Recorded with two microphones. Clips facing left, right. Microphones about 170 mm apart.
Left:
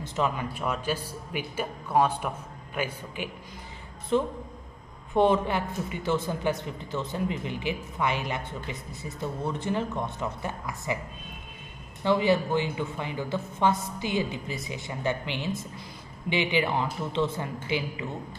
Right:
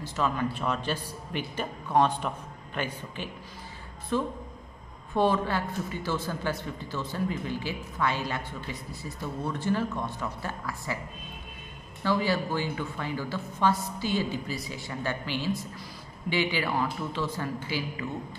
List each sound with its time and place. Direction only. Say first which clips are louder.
0.0 s a man's voice: even; 20° left (ahead or behind)
4.1 s a woman's voice: left 3 dB; 20° left (ahead or behind)
12.0 s a woman's voice: left 4 dB; 20° left (ahead or behind)